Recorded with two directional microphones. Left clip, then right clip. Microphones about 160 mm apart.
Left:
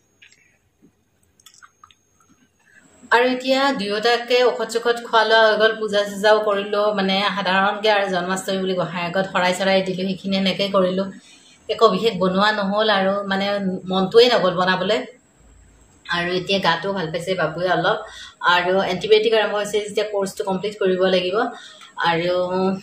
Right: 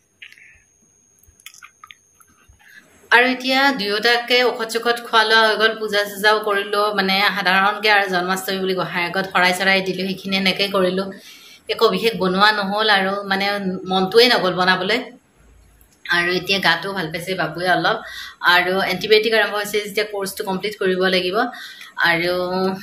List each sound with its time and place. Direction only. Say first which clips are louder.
1.4 s drip: right 6 dB; 30° left (ahead or behind)
3.1 s a woman's voice: right 2 dB; centre (ahead or behind)
16.0 s a woman's voice: right 4 dB; centre (ahead or behind)